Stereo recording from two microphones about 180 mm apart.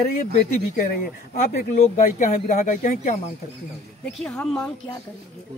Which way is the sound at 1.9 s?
45° left (ahead or behind).